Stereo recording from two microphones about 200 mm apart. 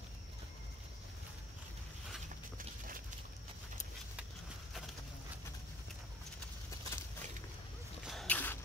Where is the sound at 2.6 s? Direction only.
45° right (ahead or behind).